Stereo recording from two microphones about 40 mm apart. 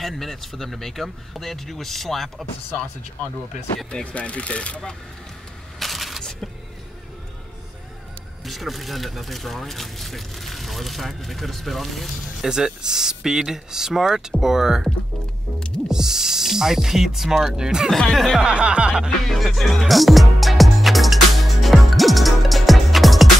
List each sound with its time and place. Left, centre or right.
0.0 s speech: centre
4.0 s speech: left
5.8 s a sound: centre
8.5 s speech: centre
12.4 s speech: centre
15.9 s speech: centre
17.8 s speech: centre
18.4 s music: right
19.2 s music: centre